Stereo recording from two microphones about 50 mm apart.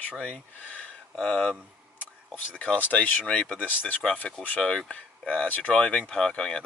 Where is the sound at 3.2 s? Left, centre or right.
Left.